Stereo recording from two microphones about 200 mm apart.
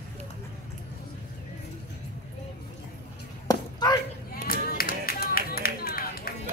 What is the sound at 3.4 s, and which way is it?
Basketball bounce, 20° left (ahead or behind).